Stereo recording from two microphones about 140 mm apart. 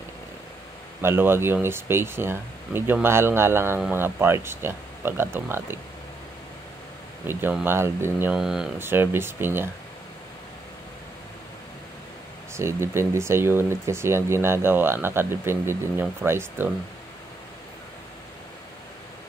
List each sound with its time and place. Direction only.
1.0 s speech: 15° right (ahead or behind)
7.2 s speech: 15° right (ahead or behind)
8.4 s speech: 5° right (ahead or behind)
8.7 s speech: 15° right (ahead or behind)
12.5 s speech: 20° right (ahead or behind)